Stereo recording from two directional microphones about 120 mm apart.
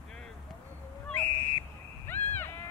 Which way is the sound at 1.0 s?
15° left (ahead or behind).